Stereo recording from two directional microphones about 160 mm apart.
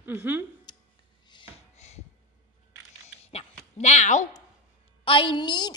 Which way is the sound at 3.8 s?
45° left (ahead or behind).